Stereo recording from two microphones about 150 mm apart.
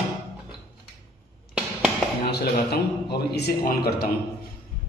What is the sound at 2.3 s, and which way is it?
Speech, 90° left.